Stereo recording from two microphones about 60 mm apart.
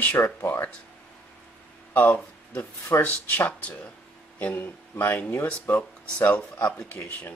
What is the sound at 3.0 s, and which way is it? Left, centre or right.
Speech, left.